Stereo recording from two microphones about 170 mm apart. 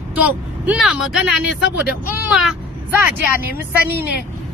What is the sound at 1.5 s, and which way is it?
Speech, 90° left.